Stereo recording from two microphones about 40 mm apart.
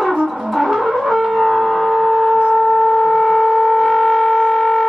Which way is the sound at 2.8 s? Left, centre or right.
Centre.